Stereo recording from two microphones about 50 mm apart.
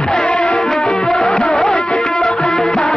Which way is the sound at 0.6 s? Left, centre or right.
Centre.